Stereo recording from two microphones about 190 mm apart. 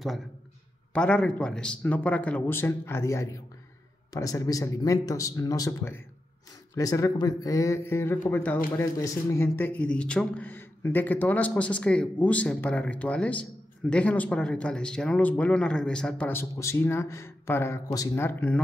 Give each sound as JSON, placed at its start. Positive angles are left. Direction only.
{"t": 0.9, "sound": "a man's voice", "side_deg": 5}